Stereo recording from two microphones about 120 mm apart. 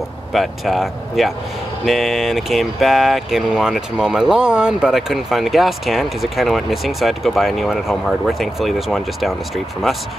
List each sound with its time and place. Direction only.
0.3 s speech: centre (ahead or behind)